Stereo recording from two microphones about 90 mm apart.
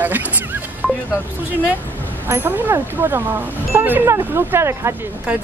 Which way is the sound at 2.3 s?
20° right (ahead or behind).